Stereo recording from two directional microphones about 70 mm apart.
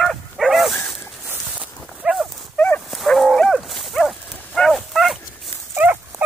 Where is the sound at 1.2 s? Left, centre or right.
Right.